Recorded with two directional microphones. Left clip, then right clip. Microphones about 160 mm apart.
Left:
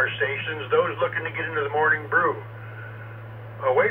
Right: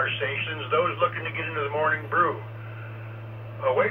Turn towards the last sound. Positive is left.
turn(degrees=15)  # may be behind; listen again after turning